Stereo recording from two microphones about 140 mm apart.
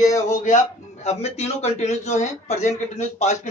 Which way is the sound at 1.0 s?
50° left (ahead or behind).